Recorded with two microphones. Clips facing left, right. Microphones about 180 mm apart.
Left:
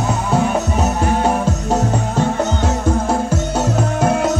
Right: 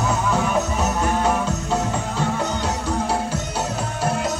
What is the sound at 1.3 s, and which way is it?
Music, 40° left (ahead or behind).